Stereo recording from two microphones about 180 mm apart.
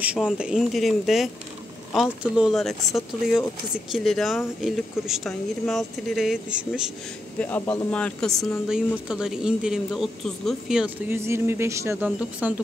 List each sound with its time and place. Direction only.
0.0 s speech: 5° right (ahead or behind)
7.3 s speech: 10° left (ahead or behind)
11.1 s speech: 15° right (ahead or behind)